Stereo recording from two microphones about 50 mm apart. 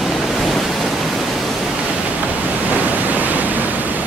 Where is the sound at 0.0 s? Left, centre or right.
Centre.